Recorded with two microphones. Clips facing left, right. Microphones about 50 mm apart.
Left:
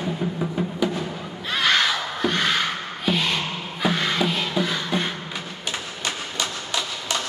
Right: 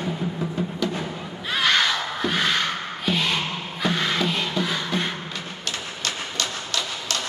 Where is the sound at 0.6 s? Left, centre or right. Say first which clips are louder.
Left 1 dB; centre.